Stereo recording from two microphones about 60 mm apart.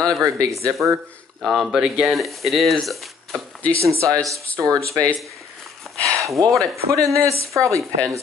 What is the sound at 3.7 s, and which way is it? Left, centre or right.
Speech, right.